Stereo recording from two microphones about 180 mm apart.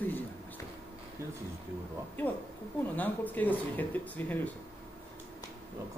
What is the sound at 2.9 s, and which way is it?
Speech, 10° left (ahead or behind).